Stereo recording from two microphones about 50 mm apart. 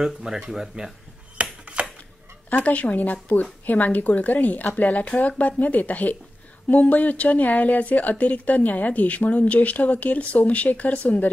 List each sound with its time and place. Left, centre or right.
0.2 s speech: centre
1.4 s a sound: right
2.5 s speech: left
5.1 s speech: left
5.6 s speech: left